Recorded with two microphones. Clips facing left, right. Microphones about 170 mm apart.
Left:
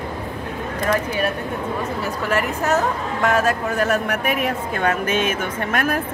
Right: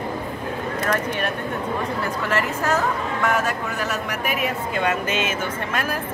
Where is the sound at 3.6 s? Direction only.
50° left (ahead or behind).